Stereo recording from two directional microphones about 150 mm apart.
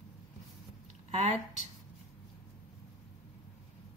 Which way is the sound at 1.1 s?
45° right (ahead or behind).